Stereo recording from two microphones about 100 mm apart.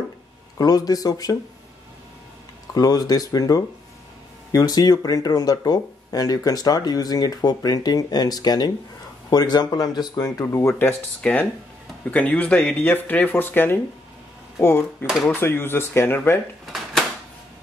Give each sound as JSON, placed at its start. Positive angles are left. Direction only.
{"t": 0.6, "sound": "speech", "side_deg": 40}
{"t": 2.7, "sound": "speech", "side_deg": 40}